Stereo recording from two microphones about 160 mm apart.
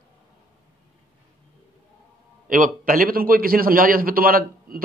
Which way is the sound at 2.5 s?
60° right (ahead or behind).